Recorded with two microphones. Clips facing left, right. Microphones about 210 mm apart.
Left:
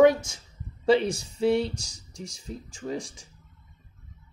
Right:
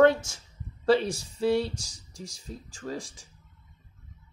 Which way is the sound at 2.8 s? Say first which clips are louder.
Left 3 dB; 15° left (ahead or behind).